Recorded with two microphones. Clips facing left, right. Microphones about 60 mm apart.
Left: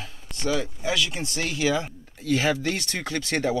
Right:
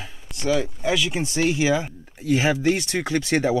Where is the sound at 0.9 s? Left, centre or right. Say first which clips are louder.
Right 4 dB; centre.